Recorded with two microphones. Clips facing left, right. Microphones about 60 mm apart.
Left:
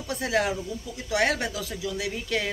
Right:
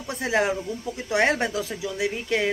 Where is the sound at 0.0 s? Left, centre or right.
Right.